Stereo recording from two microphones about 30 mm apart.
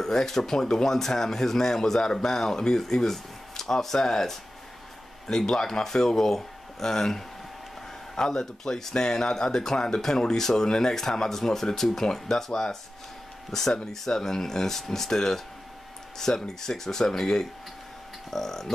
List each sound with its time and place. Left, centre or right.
0.0 s speech: centre